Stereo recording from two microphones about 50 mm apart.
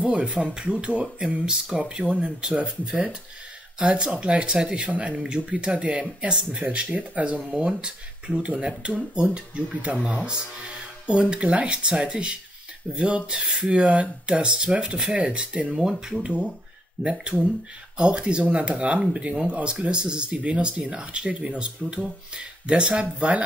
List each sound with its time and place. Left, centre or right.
0.0 s speech: right
15.7 s speech: centre
16.2 s speech: right